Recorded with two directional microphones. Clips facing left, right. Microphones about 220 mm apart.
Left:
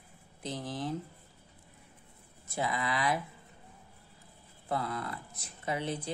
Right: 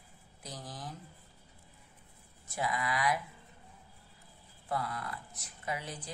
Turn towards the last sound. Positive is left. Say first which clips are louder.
# left 6 dB
turn(degrees=25)  # may be behind; listen again after turning